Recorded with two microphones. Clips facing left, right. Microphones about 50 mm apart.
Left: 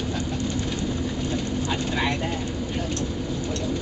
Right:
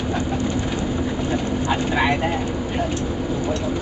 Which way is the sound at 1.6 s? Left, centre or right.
Centre.